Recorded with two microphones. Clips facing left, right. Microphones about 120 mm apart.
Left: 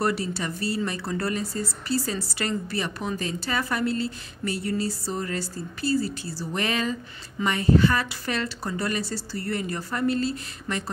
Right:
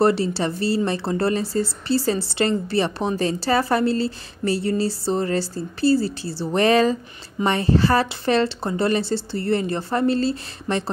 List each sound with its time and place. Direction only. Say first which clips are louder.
0.0 s speech: right 7 dB; 30° right (ahead or behind)